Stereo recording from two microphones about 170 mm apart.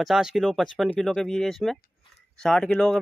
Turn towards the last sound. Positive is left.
turn(degrees=5)  # may be behind; listen again after turning